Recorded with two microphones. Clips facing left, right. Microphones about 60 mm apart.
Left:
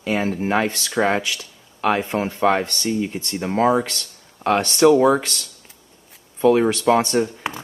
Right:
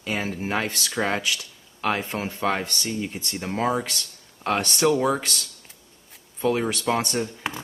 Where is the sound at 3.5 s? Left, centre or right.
Left.